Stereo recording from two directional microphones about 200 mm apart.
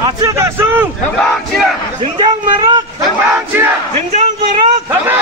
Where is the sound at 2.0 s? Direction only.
30° right (ahead or behind).